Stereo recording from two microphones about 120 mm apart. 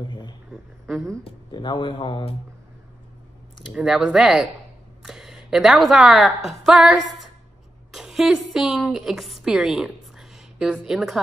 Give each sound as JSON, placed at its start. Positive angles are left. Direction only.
{"t": 0.0, "sound": "a sound", "side_deg": 40}
{"t": 0.5, "sound": "speech", "side_deg": 0}
{"t": 1.5, "sound": "a man's voice", "side_deg": 40}
{"t": 3.7, "sound": "a woman's voice", "side_deg": -5}